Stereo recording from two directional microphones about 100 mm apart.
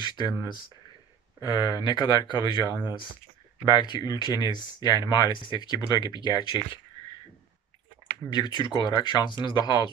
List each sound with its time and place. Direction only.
0.0 s speech: 50° left (ahead or behind)
8.3 s speech: 45° left (ahead or behind)